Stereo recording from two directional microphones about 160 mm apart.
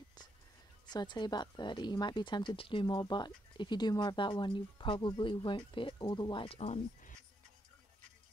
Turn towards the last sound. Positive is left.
turn(degrees=45)  # may be behind; listen again after turning